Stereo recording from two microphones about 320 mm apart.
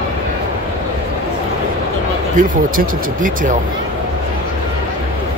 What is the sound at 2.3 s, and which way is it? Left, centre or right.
Speech, right.